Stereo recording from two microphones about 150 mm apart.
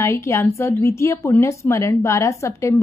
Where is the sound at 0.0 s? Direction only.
20° left (ahead or behind).